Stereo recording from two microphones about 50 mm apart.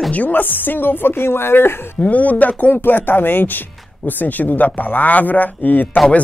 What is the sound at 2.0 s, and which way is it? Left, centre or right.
Speech, left.